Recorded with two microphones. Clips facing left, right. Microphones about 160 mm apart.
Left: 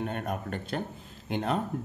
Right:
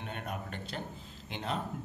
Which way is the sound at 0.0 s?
45° left (ahead or behind).